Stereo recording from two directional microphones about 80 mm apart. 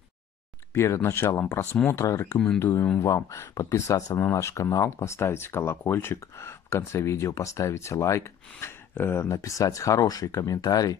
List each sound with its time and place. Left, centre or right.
0.7 s speech: left
2.0 s speech: left
2.3 s speech: centre
2.6 s speech: left
3.0 s speech: left